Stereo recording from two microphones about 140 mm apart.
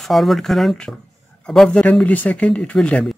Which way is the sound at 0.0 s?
Centre (ahead or behind).